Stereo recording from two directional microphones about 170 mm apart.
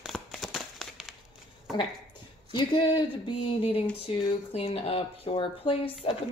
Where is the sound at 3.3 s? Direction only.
30° left (ahead or behind).